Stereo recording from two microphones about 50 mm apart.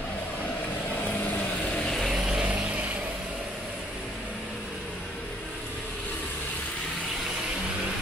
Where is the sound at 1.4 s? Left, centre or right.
Centre.